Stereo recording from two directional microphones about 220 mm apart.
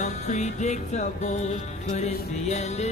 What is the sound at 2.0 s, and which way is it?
Music, 30° left (ahead or behind).